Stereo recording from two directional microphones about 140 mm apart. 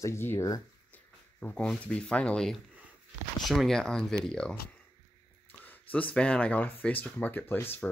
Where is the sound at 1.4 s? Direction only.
10° left (ahead or behind).